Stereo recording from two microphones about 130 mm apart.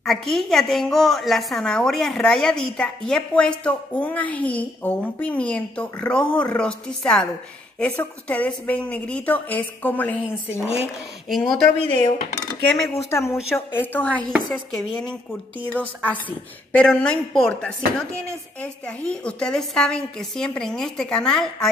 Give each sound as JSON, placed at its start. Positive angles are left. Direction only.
{"t": 0.0, "sound": "a woman's voice", "side_deg": 0}
{"t": 11.2, "sound": "a woman's voice", "side_deg": 0}
{"t": 12.8, "sound": "a woman's voice", "side_deg": 20}